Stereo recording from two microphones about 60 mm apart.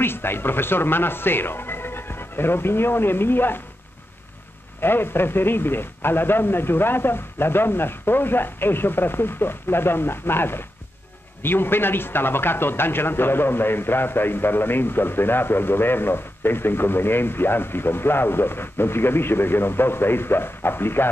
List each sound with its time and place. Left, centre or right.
0.0 s speech: left
4.7 s a man's voice: left